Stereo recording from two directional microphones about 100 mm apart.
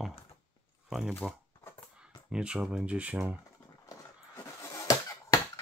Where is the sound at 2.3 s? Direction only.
10° right (ahead or behind).